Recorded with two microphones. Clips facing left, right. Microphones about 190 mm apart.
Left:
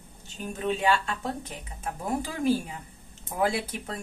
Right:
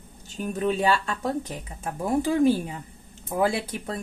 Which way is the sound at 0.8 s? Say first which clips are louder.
Right 2 dB; 35° right (ahead or behind).